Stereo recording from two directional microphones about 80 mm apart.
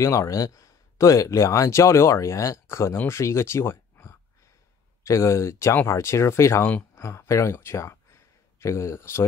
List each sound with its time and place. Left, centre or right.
0.0 s speech: left